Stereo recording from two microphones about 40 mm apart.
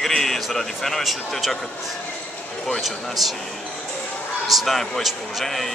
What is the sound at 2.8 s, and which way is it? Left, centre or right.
Speech, centre.